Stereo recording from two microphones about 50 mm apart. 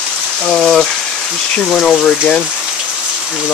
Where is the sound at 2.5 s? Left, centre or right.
Centre.